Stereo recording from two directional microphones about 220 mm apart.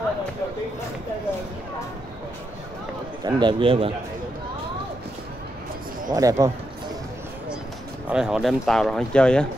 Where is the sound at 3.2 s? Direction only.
20° right (ahead or behind).